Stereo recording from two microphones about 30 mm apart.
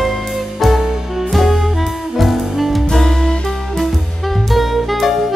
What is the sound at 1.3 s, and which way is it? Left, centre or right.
Music, centre.